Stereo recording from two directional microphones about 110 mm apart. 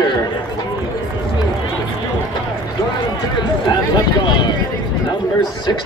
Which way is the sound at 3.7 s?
45° left (ahead or behind).